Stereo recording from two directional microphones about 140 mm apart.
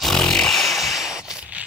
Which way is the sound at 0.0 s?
5° left (ahead or behind).